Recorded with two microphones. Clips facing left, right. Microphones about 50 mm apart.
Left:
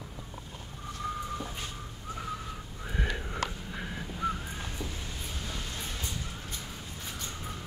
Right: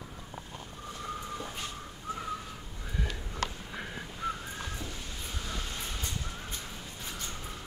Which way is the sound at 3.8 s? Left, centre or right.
Centre.